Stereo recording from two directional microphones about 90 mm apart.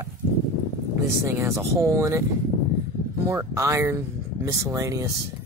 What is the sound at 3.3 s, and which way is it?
Speech, 35° right (ahead or behind).